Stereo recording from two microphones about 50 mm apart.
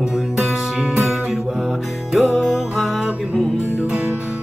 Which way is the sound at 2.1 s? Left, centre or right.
Centre.